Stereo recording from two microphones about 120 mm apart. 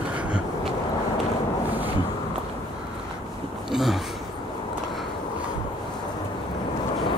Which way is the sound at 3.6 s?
Centre (ahead or behind).